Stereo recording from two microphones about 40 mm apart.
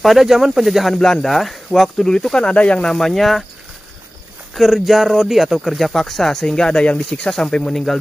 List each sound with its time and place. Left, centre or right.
0.0 s speech: centre
0.9 s speech: centre
1.2 s speech: centre
2.0 s speech: centre
2.5 s speech: left
2.8 s speech: centre
4.6 s speech: centre; by 7.2 s left
7.2 s speech: centre